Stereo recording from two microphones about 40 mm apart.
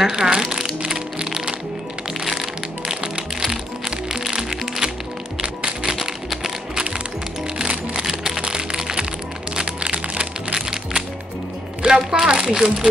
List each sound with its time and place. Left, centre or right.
0.0 s music: centre
4.1 s music: centre
5.4 s music: right
5.9 s music: centre
12.3 s speech: centre